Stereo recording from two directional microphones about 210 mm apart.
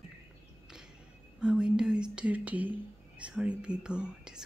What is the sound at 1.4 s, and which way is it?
Whispering, 5° right (ahead or behind).